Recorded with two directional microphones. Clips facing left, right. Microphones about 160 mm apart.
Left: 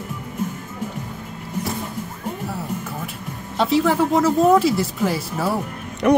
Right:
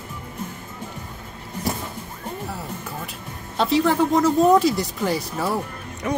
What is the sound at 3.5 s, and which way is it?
Speech, centre (ahead or behind).